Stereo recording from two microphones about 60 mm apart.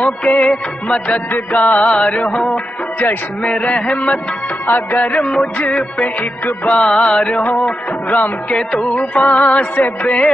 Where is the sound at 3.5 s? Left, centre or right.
Centre.